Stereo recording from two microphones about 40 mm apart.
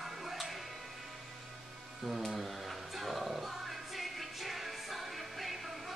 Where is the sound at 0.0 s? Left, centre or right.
Centre.